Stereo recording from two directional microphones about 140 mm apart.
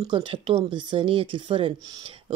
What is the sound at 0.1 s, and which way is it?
Speech, 40° right (ahead or behind).